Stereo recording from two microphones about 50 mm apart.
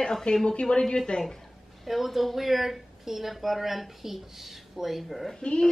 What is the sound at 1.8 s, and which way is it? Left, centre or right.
Speech, centre.